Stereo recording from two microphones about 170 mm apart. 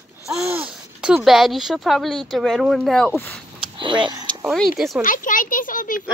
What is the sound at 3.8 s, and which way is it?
Vehicle, 30° right (ahead or behind).